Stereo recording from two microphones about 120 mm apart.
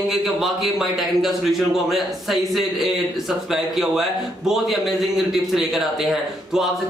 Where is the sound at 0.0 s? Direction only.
Centre (ahead or behind).